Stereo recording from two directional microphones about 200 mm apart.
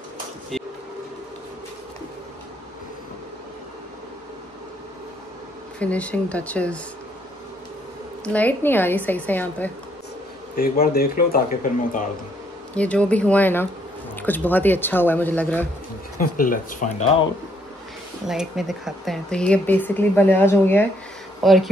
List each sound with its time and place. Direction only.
5.8 s speech: 5° left (ahead or behind)
8.2 s speech: 5° left (ahead or behind)
10.5 s speech: 50° left (ahead or behind)
12.7 s speech: 5° left (ahead or behind)
16.2 s speech: 45° left (ahead or behind)
18.2 s speech: centre (ahead or behind)